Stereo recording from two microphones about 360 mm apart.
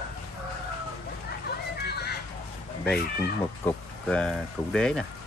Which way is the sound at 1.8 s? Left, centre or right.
Left.